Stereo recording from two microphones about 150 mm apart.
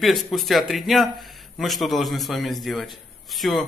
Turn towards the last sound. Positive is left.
turn(degrees=0)  # may be behind; listen again after turning